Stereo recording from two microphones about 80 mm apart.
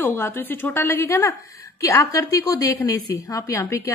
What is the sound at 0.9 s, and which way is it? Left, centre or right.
A woman's voice, left.